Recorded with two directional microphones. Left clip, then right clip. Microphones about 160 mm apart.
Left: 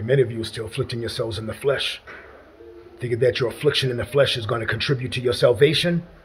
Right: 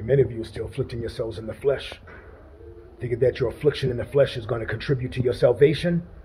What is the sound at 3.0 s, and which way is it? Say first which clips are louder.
Speech: left 2 dB; 25° left (ahead or behind).